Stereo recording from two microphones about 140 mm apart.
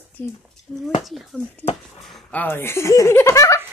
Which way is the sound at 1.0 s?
Centre (ahead or behind).